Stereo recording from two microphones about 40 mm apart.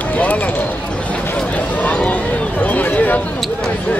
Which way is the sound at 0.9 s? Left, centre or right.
Left.